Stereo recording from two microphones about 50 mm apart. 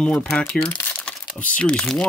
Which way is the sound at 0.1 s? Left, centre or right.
Centre.